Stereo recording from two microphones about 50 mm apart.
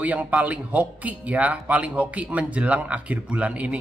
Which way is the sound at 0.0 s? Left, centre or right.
Right.